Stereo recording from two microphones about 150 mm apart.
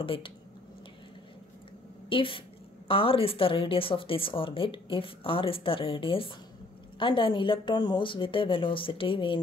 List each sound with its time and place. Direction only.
0.0 s speech: 35° left (ahead or behind)
2.0 s a woman's voice: 35° left (ahead or behind)